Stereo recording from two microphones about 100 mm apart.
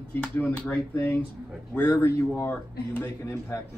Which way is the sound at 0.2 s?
15° left (ahead or behind).